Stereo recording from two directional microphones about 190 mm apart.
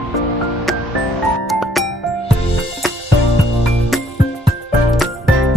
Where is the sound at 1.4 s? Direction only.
Centre (ahead or behind).